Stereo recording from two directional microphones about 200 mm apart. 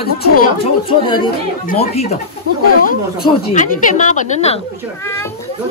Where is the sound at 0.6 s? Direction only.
25° left (ahead or behind).